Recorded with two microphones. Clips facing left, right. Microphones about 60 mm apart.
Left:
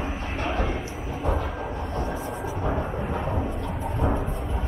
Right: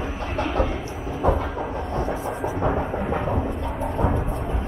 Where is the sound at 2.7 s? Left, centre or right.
Centre.